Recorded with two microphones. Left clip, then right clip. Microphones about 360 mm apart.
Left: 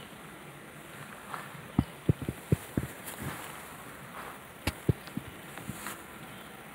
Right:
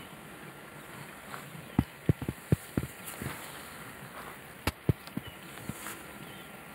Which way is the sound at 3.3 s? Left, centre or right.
Centre.